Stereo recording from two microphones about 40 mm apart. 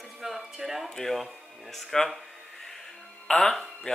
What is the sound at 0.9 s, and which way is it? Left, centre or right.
Speech, centre.